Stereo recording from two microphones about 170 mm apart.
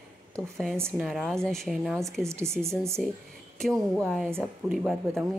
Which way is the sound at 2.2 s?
15° right (ahead or behind).